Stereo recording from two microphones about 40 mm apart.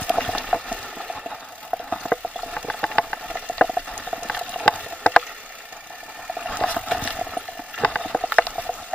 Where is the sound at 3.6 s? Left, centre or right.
Right.